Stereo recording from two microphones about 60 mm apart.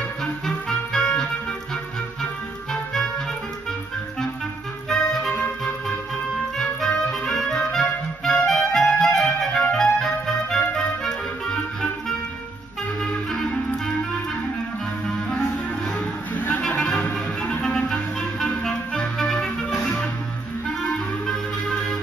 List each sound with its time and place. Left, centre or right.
0.2 s music: centre
2.7 s music: centre
4.8 s music: centre
6.6 s clarinet: centre
8.9 s music: centre
13.0 s clarinet: centre
16.6 s music: centre
17.7 s clarinet: centre
19.7 s music: centre
21.3 s music: centre